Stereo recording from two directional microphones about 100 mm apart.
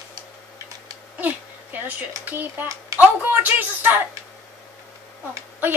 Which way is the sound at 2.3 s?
20° right (ahead or behind).